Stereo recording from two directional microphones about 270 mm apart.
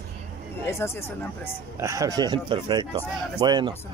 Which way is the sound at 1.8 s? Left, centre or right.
Centre.